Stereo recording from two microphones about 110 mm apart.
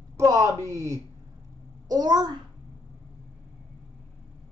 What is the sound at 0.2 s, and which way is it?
Speech, 30° right (ahead or behind).